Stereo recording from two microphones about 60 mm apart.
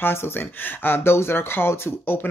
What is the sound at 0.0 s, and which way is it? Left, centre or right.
Speech, left.